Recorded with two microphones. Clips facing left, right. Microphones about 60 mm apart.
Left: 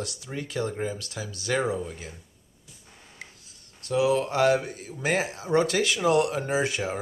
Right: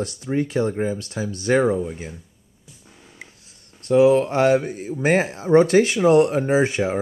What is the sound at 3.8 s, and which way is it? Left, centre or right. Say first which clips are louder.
Speech: right 9 dB; right.